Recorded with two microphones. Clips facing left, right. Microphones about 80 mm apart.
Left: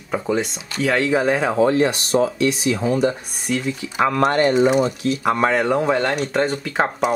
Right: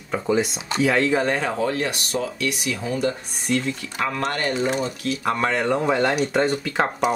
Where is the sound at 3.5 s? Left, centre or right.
Centre.